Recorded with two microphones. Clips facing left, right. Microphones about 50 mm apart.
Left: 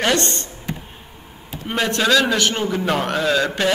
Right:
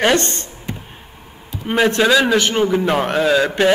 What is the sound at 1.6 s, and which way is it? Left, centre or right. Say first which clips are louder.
A man's voice: right 5 dB; centre.